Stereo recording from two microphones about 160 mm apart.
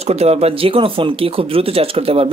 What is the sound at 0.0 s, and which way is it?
Speech, 40° right (ahead or behind).